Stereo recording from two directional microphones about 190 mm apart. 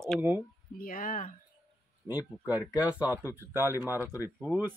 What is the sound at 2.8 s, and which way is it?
Speech, 10° right (ahead or behind).